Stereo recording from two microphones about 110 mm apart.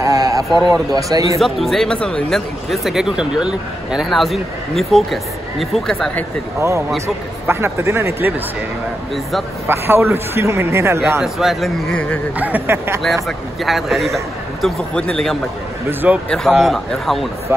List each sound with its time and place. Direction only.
0.0 s a sound: 30° right (ahead or behind)
0.9 s a man's voice: 30° right (ahead or behind)
1.4 s speech: centre (ahead or behind)
7.4 s a man's voice: 25° right (ahead or behind)
9.7 s a man's voice: 25° right (ahead or behind)
11.1 s speech: centre (ahead or behind)
12.4 s a man's voice: 15° right (ahead or behind)
13.0 s speech: centre (ahead or behind)
15.9 s a man's voice: 15° right (ahead or behind)
16.3 s speech: centre (ahead or behind)
17.5 s a man's voice: 20° right (ahead or behind)